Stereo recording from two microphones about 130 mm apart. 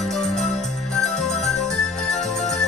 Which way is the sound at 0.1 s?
5° left (ahead or behind).